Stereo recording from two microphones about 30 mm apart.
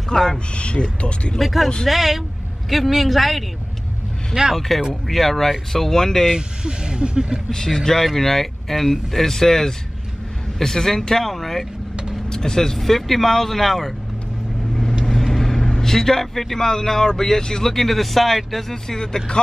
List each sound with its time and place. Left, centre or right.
0.1 s speech: centre
0.6 s speech: left
1.4 s speech: centre
4.6 s speech: centre
6.3 s speech: right
7.5 s speech: centre
12.3 s speech: centre
15.2 s vehicle: centre
15.7 s speech: centre
17.6 s speech: centre
18.9 s speech: centre